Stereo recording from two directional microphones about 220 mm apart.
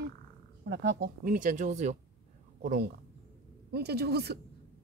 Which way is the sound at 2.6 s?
45° right (ahead or behind).